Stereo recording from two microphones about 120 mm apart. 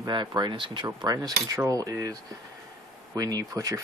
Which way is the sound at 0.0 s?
35° right (ahead or behind).